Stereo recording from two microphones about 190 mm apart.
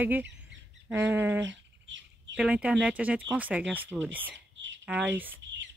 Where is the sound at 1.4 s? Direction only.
75° right (ahead or behind).